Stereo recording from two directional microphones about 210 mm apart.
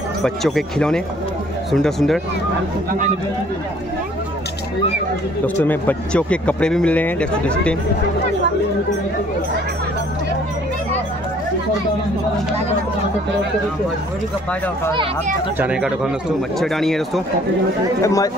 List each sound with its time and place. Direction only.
0.2 s speech: centre (ahead or behind)
5.6 s speech: 10° left (ahead or behind)
15.6 s speech: 5° right (ahead or behind)
18.0 s speech: 15° left (ahead or behind)